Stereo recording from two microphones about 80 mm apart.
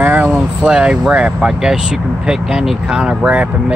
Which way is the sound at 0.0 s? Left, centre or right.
Right.